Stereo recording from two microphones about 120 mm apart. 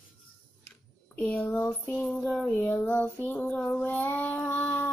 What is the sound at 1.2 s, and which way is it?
Child singing, 10° left (ahead or behind).